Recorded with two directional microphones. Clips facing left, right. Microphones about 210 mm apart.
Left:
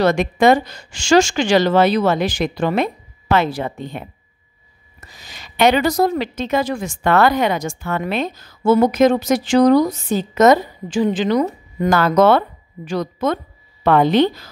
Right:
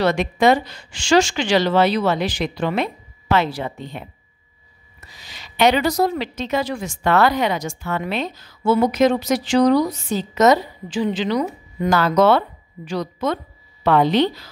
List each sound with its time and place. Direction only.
0.0 s a woman's voice: 50° left (ahead or behind)
5.0 s a woman's voice: 45° left (ahead or behind)